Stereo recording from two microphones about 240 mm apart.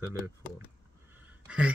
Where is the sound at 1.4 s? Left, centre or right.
Centre.